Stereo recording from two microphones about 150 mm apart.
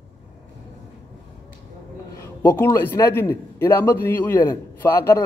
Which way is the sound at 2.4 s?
15° left (ahead or behind).